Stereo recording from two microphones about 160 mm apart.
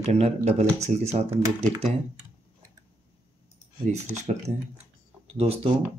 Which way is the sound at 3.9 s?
45° right (ahead or behind).